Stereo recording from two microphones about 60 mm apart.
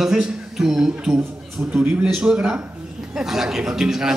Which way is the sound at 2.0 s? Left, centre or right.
Centre.